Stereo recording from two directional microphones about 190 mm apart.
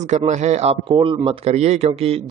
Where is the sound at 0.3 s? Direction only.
40° right (ahead or behind).